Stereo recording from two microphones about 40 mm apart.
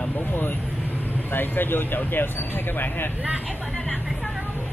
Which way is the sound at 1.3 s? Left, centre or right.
Left.